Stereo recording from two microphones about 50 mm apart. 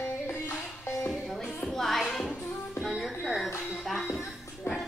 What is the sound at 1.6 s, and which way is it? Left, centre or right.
Music, centre.